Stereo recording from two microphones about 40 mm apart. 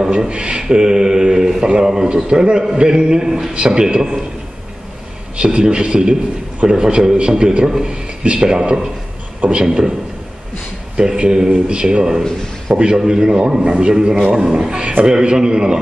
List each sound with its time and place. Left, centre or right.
0.3 s a man's voice: right
5.4 s a man's voice: right
11.0 s a man's voice: right